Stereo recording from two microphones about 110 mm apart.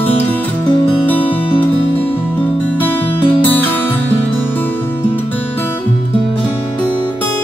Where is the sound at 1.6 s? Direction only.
15° left (ahead or behind).